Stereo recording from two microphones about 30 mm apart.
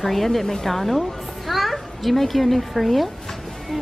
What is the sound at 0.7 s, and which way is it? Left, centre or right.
A child's voice, centre.